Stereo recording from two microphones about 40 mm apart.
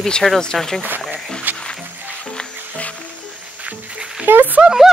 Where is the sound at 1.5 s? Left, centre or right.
Right.